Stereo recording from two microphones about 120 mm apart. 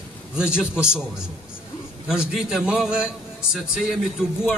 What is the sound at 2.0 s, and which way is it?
A man's voice, 5° right (ahead or behind).